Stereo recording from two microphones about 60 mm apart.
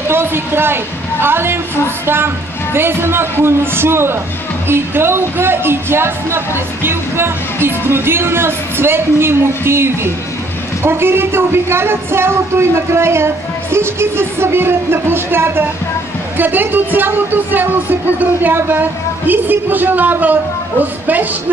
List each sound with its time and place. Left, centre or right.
0.1 s a woman's voice: right